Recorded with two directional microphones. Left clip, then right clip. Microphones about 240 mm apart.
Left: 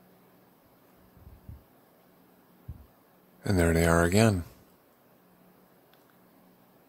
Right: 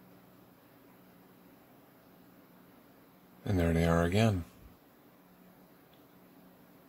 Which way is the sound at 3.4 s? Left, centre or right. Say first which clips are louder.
Left 6 dB; left.